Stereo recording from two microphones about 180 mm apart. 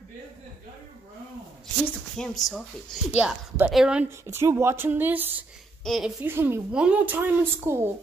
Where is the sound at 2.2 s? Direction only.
5° left (ahead or behind).